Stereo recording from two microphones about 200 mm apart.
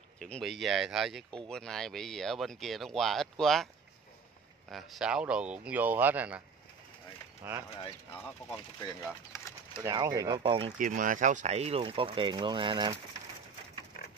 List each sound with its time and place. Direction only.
0.2 s speech: centre (ahead or behind)
4.6 s speech: centre (ahead or behind)
7.4 s speech: 10° right (ahead or behind)
8.1 s speech: 10° left (ahead or behind)
9.3 s pigeon: 15° left (ahead or behind)
9.8 s speech: 20° right (ahead or behind)
10.8 s speech: 40° right (ahead or behind); by 12.9 s 25° right (ahead or behind)